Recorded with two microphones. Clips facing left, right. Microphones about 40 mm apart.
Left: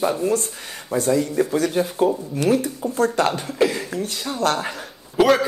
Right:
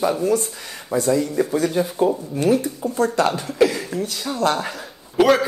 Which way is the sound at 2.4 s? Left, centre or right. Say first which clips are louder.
Right 1 dB; left.